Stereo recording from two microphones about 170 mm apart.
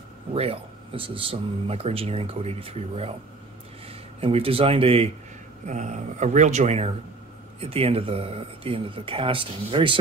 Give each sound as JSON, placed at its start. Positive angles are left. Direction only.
{"t": 0.3, "sound": "speech", "side_deg": -35}
{"t": 4.2, "sound": "speech", "side_deg": -35}
{"t": 5.7, "sound": "speech", "side_deg": -45}